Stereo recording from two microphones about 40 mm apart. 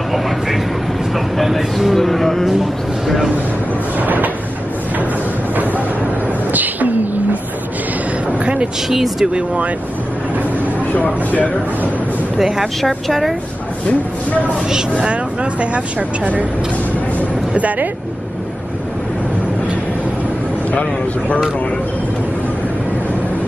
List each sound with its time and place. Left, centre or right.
1.1 s speech: centre
2.6 s speech: centre
4.0 s a sound: right
6.5 s a sound: right
8.3 s a sound: right
8.8 s speech: centre
10.9 s speech: left
12.4 s speech: centre
12.8 s speech: centre
17.6 s speech: right